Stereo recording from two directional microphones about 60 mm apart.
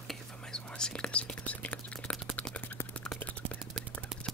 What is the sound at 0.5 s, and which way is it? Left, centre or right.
Whispering, centre.